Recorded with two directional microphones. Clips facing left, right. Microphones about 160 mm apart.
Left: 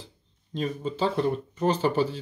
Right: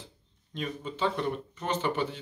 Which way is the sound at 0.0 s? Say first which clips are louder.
Left 2 dB; 35° left (ahead or behind).